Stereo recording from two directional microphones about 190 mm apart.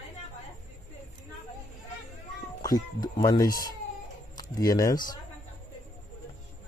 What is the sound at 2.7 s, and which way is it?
Speech, 20° left (ahead or behind).